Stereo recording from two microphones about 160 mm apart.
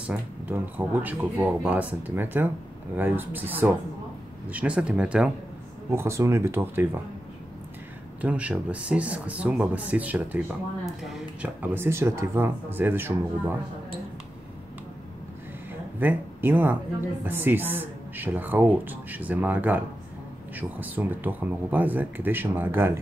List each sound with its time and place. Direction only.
0.1 s speech: 10° right (ahead or behind)
8.2 s speech: 10° right (ahead or behind)
16.0 s speech: 10° right (ahead or behind)